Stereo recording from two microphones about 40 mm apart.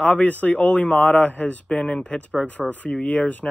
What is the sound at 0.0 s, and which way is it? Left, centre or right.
A man's voice, left.